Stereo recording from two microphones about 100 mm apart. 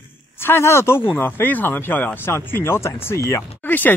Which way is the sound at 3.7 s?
20° left (ahead or behind).